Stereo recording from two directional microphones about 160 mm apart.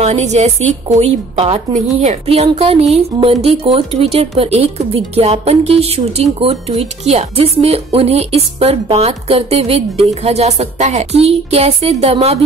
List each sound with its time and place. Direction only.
0.0 s a woman's voice: 45° right (ahead or behind)